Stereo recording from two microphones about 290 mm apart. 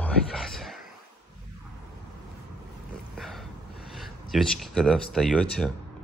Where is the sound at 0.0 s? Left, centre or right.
Centre.